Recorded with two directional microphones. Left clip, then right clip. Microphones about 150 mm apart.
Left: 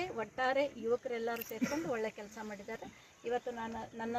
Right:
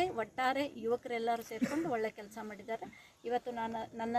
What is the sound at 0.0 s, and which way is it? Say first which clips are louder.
Speech: right 2 dB; 15° right (ahead or behind).